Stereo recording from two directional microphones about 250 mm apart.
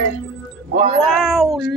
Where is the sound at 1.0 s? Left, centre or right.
Centre.